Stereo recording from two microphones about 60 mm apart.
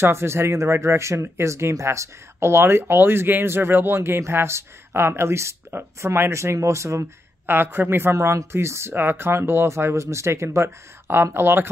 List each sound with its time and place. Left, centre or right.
0.0 s speech: right
7.4 s speech: right